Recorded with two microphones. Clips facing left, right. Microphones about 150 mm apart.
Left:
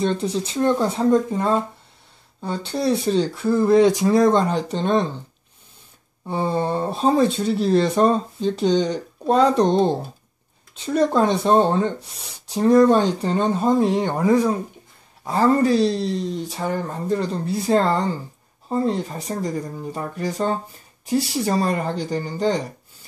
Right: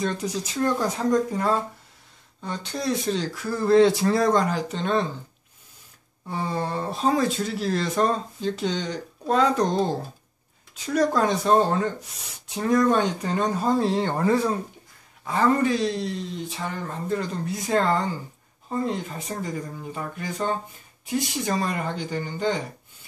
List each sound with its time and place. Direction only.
0.0 s speech: 30° left (ahead or behind)
6.2 s speech: 25° left (ahead or behind)
15.2 s speech: 35° left (ahead or behind)